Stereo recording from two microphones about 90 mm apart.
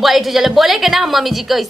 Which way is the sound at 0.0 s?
Centre (ahead or behind).